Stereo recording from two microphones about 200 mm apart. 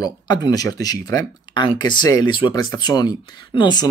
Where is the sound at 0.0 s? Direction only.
20° left (ahead or behind).